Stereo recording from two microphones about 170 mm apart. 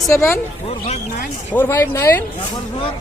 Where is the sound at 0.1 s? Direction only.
15° left (ahead or behind).